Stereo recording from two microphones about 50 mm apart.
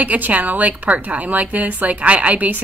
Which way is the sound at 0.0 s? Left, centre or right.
Right.